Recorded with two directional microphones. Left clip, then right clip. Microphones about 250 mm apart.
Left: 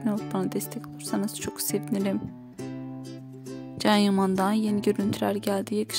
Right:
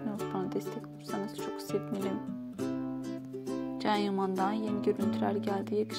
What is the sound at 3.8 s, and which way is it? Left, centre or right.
Speech, left.